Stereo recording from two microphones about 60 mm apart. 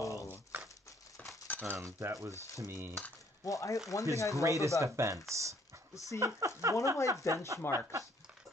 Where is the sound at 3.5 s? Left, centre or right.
Left.